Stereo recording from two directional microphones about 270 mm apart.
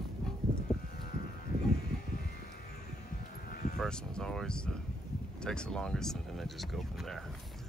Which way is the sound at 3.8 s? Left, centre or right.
Centre.